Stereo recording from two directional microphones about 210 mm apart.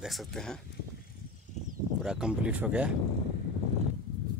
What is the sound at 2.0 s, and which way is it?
Speech, 5° right (ahead or behind).